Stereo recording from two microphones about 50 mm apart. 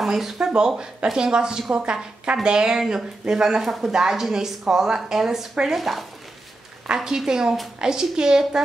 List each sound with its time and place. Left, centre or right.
0.0 s a woman's voice: centre